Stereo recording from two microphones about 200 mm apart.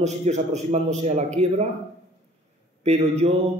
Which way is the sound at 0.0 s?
35° right (ahead or behind).